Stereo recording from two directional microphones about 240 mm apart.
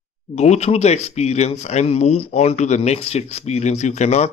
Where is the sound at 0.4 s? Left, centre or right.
Left.